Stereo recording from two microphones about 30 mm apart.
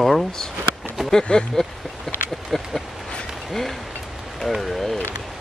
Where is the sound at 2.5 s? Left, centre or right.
Centre.